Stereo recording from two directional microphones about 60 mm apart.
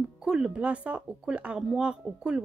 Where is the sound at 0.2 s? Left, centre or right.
Centre.